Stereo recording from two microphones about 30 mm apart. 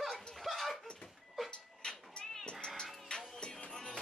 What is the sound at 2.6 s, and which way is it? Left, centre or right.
Music, left.